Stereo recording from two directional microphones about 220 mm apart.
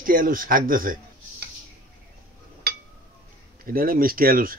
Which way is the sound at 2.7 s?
50° right (ahead or behind).